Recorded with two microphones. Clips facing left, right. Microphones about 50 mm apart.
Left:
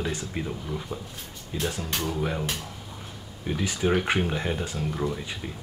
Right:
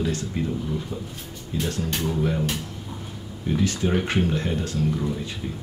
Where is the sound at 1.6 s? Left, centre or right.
Centre.